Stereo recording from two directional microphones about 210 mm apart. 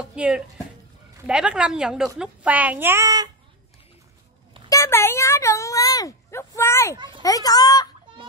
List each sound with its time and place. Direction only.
0.0 s a sound: 5° right (ahead or behind)
1.1 s a woman's voice: 5° right (ahead or behind)
4.6 s speech: 15° left (ahead or behind)